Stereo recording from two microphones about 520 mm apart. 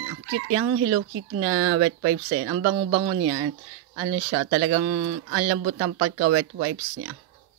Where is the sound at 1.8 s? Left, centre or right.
Right.